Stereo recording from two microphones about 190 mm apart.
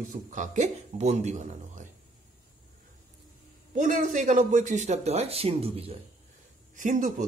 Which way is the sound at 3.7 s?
40° right (ahead or behind).